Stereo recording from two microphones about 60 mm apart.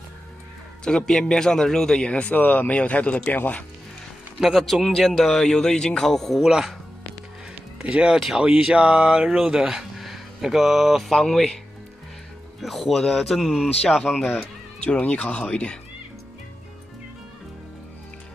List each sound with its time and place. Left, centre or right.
0.8 s speech: centre
2.3 s speech: left
4.4 s speech: centre
7.9 s speech: centre
9.4 s speech: centre
14.9 s speech: left